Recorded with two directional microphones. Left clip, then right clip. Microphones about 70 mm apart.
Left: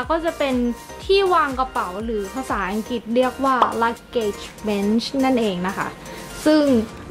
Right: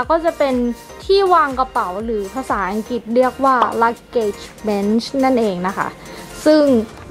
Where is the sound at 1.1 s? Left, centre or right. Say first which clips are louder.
Right 3 dB; right.